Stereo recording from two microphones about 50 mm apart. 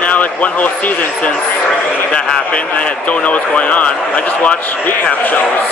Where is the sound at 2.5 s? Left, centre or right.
Left.